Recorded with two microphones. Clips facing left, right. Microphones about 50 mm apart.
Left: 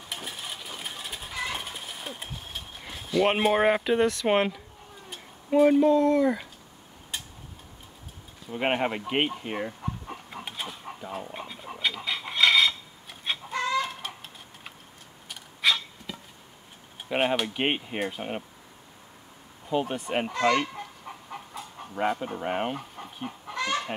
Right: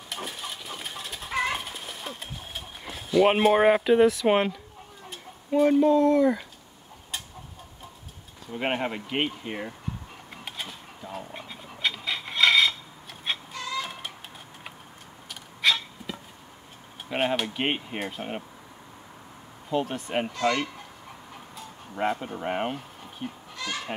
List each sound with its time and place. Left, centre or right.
0.2 s a sound: centre
1.6 s horse: centre
2.2 s a sound: centre
3.2 s speech: centre
8.5 s speech: centre
10.4 s dog: centre
13.3 s chicken: centre
15.2 s a sound: centre
17.1 s speech: centre
19.7 s speech: centre
20.2 s speech: left
21.9 s speech: centre
23.5 s goose: left